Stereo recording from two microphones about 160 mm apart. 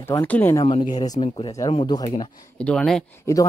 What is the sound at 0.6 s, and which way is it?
Speech, 35° left (ahead or behind).